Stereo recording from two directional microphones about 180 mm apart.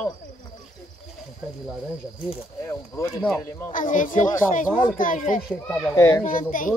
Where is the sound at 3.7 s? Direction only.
45° left (ahead or behind).